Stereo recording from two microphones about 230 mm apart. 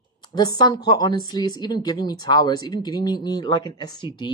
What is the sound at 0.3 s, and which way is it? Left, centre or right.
A woman's voice, centre.